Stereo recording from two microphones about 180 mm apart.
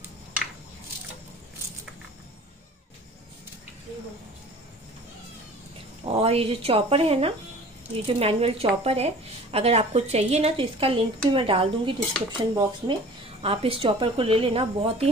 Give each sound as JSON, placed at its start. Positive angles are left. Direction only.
{"t": 6.0, "sound": "a woman's voice", "side_deg": -35}